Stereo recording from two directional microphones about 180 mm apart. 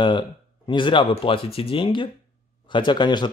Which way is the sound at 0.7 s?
25° left (ahead or behind).